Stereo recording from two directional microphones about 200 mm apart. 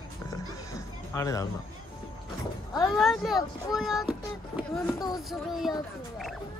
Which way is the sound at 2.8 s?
Centre (ahead or behind).